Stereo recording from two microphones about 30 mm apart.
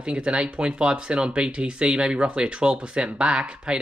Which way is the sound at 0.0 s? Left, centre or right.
Right.